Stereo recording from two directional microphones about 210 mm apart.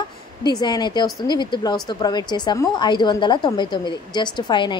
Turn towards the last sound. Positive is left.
turn(degrees=20)  # may be behind; listen again after turning